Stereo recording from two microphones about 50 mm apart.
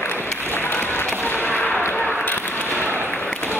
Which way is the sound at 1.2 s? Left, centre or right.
Left.